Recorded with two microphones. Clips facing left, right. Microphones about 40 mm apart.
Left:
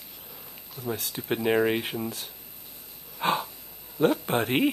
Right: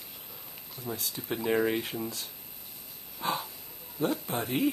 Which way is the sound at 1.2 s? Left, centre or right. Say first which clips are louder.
Left 4 dB; left.